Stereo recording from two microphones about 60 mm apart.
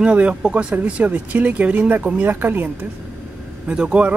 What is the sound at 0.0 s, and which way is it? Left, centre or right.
Speech, right.